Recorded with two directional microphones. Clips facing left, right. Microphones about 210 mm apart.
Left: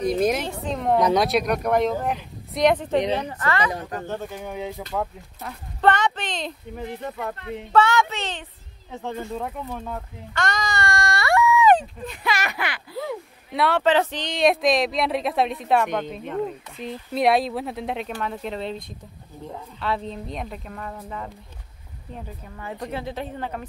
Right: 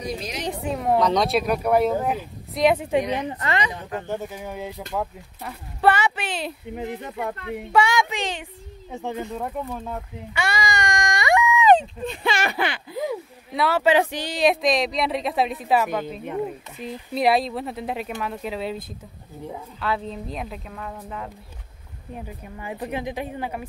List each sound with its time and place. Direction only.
0.0 s a woman's voice: 55° left (ahead or behind)
0.5 s speech: 10° right (ahead or behind)
0.9 s a woman's voice: 5° left (ahead or behind); by 3.6 s 20° right (ahead or behind)
4.1 s speech: 5° right (ahead or behind)
7.5 s speech: 10° right (ahead or behind); by 12.8 s 30° right (ahead or behind)
13.5 s speech: centre (ahead or behind)
22.1 s speech: 10° right (ahead or behind)